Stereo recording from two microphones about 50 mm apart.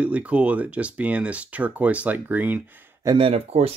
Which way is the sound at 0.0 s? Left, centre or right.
Right.